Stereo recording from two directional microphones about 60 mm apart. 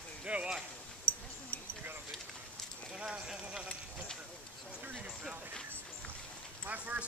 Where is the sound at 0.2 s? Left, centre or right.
Centre.